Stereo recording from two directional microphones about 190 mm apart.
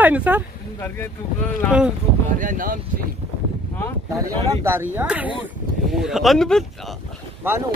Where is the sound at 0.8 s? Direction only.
10° left (ahead or behind).